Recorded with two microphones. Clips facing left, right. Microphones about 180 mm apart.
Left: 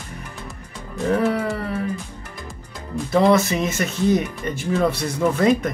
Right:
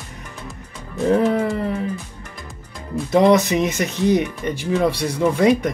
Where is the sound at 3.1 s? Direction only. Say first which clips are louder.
Right 2 dB; 20° right (ahead or behind).